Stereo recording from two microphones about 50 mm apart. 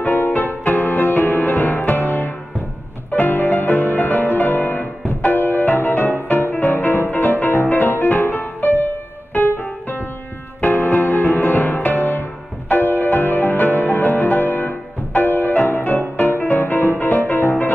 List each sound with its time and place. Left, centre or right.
0.0 s music: left